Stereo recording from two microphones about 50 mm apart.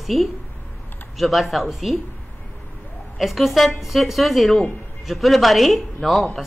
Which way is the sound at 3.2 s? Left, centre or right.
Centre.